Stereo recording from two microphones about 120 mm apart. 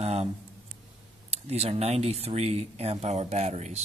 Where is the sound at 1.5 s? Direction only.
60° right (ahead or behind).